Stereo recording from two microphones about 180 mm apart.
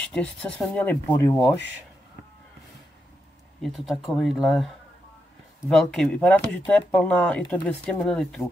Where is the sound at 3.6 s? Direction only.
Centre (ahead or behind).